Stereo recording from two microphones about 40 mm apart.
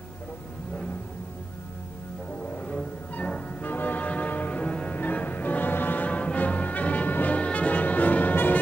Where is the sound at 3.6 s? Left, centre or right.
Left.